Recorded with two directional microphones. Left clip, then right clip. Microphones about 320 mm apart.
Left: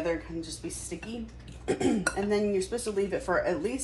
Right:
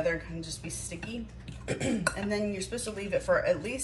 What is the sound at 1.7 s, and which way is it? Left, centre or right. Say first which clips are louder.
Speech: left 3 dB; centre.